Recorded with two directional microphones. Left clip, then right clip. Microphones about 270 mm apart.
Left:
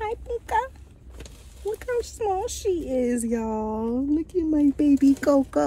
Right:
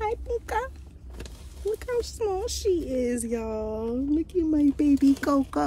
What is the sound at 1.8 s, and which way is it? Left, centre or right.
Speech, centre.